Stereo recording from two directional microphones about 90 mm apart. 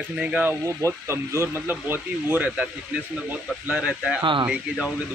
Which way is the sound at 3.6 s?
5° right (ahead or behind).